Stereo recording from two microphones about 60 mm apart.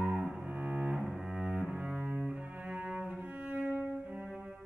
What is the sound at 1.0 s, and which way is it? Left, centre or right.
Cello, centre.